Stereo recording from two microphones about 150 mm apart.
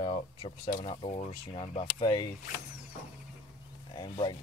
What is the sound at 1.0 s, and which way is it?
Speech, 45° left (ahead or behind).